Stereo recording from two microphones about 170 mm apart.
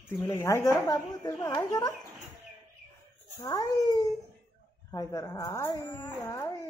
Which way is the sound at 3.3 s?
20° left (ahead or behind).